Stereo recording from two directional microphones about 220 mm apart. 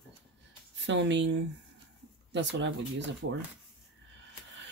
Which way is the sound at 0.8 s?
55° right (ahead or behind).